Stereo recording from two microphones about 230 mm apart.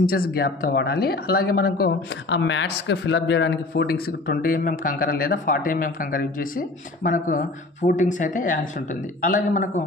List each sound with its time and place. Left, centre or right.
0.0 s speech: left